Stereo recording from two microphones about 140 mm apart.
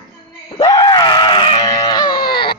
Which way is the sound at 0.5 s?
30° left (ahead or behind).